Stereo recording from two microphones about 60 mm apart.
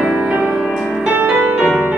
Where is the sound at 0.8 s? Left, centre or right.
Centre.